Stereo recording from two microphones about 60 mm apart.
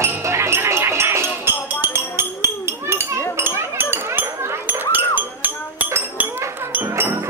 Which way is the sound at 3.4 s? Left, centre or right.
Right.